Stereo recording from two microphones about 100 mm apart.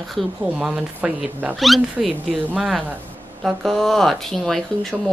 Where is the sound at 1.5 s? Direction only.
Centre (ahead or behind).